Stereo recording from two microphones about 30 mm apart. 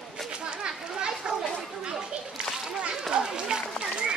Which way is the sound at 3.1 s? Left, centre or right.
Right.